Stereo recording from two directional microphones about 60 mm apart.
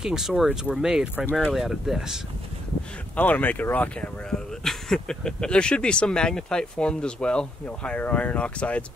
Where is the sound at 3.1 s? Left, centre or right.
Left.